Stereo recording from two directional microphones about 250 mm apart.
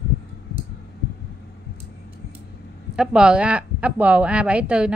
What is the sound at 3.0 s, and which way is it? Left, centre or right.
A woman's voice, centre.